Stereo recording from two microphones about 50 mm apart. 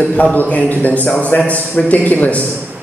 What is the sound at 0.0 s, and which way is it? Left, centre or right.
A man's voice, left.